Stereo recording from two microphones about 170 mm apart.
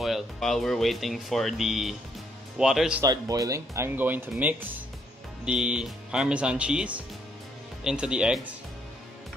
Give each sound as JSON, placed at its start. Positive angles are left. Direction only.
{"t": 0.0, "sound": "speech", "side_deg": 0}
{"t": 3.0, "sound": "speech", "side_deg": -20}